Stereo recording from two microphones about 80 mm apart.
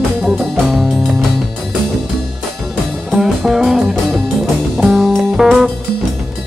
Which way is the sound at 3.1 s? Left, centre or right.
Centre.